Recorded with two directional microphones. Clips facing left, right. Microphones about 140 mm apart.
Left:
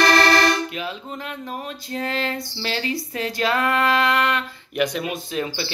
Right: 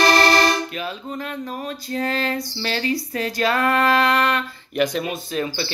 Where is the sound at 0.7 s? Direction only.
15° left (ahead or behind).